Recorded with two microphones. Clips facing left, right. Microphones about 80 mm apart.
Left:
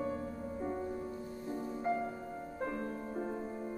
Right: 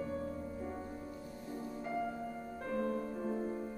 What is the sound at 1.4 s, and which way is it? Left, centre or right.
Music, left.